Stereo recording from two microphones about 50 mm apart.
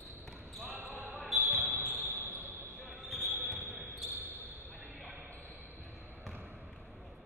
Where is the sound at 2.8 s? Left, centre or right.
Right.